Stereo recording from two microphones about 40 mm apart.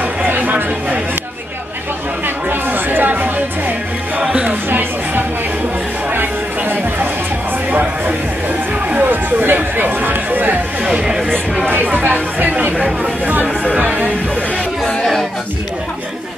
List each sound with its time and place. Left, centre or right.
0.0 s chatter: right
2.2 s music: right
8.8 s a sound: right
9.1 s music: right
10.8 s a sound: centre
11.7 s chatter: right
12.4 s chatter: right